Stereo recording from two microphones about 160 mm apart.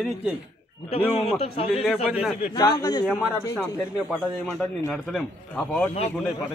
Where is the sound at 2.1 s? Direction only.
5° right (ahead or behind).